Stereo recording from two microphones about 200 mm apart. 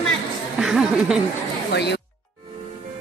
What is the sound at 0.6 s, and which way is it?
Speech, centre (ahead or behind).